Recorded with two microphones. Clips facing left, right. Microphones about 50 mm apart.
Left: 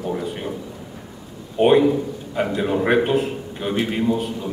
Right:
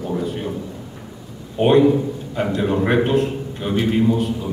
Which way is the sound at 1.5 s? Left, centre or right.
Centre.